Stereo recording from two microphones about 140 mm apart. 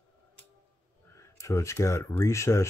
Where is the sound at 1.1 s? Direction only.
20° left (ahead or behind).